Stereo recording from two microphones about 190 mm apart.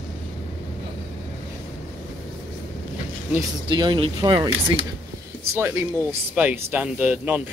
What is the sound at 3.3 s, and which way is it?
Speech, 25° right (ahead or behind).